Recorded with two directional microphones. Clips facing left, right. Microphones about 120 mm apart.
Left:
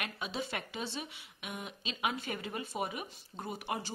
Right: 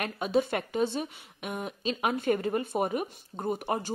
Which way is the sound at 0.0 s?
50° right (ahead or behind).